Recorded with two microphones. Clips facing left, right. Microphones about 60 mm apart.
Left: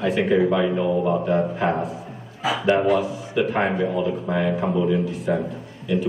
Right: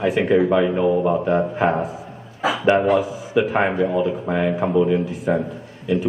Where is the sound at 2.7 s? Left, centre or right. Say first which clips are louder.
Right 2 dB; right.